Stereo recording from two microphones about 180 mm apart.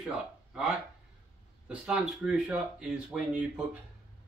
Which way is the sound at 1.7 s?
5° right (ahead or behind).